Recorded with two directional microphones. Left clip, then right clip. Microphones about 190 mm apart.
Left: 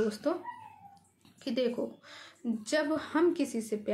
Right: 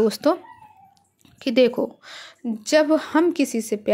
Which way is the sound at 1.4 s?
45° right (ahead or behind).